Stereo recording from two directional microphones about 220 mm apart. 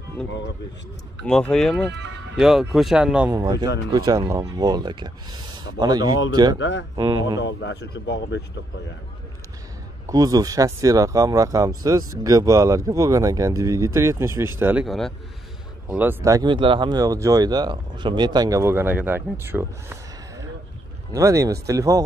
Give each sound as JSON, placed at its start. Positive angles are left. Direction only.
{"t": 1.2, "sound": "speech", "side_deg": 5}
{"t": 1.9, "sound": "speech", "side_deg": -55}
{"t": 2.3, "sound": "speech", "side_deg": 0}
{"t": 3.3, "sound": "speech", "side_deg": -20}
{"t": 6.6, "sound": "speech", "side_deg": 55}
{"t": 7.0, "sound": "speech", "side_deg": -20}
{"t": 7.3, "sound": "speech", "side_deg": 55}
{"t": 10.0, "sound": "speech", "side_deg": -15}
{"t": 21.1, "sound": "speech", "side_deg": -15}